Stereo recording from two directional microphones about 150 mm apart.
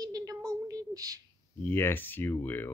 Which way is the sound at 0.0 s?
25° right (ahead or behind).